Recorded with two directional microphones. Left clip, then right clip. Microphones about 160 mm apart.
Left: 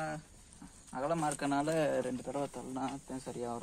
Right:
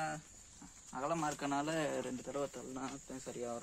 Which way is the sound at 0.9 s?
15° left (ahead or behind).